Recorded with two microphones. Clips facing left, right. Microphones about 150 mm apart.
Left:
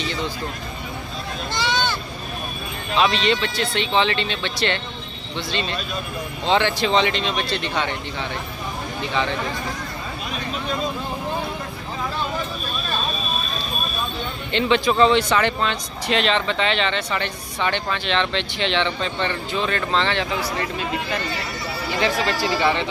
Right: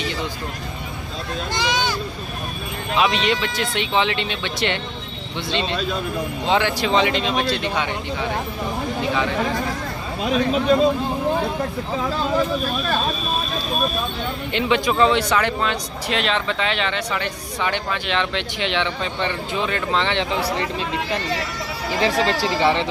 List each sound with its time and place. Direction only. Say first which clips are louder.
1.5 s a sound: even; 15° right (ahead or behind)
3.0 s speech: even; 10° right (ahead or behind)
6.4 s speech: left 1 dB; 10° right (ahead or behind)
14.5 s speech: left 1 dB; 10° right (ahead or behind)
22.0 s speech: right 2 dB; 35° right (ahead or behind)